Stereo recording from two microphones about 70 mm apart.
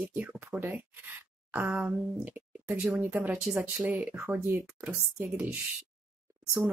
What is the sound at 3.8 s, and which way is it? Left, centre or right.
Speech, right.